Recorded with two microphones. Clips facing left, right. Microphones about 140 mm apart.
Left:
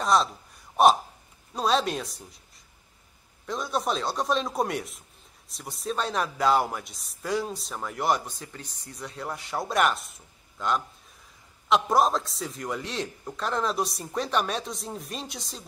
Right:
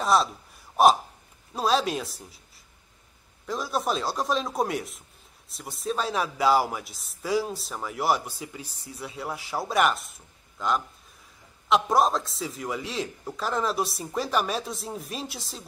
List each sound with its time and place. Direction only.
0.0 s a man's voice: 5° right (ahead or behind)